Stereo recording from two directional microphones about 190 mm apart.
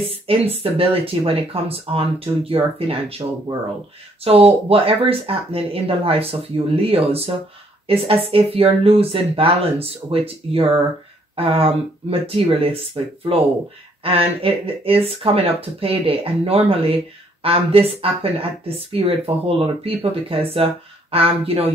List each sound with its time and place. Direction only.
0.3 s speech: 30° right (ahead or behind)